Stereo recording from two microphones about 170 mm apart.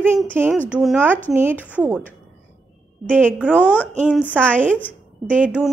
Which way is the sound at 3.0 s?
5° left (ahead or behind).